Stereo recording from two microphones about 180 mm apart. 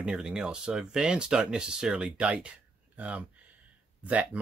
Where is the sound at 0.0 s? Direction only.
5° right (ahead or behind).